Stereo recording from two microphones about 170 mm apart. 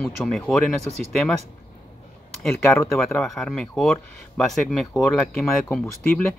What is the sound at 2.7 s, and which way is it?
Speech, 15° left (ahead or behind).